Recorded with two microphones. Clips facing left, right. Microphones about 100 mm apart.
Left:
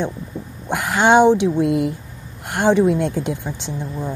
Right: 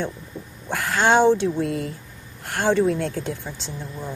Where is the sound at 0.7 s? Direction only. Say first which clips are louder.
Left 4 dB; 15° left (ahead or behind).